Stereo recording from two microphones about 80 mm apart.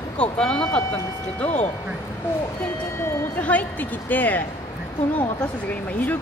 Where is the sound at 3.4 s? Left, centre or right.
Centre.